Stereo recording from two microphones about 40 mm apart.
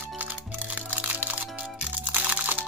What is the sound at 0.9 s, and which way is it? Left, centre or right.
Music, right.